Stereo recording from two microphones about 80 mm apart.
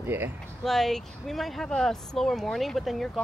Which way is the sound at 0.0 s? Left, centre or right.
Right.